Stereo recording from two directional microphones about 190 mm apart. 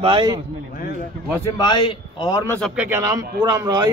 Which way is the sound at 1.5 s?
25° left (ahead or behind).